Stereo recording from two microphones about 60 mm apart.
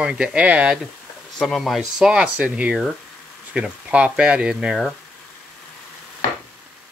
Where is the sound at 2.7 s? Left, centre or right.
Centre.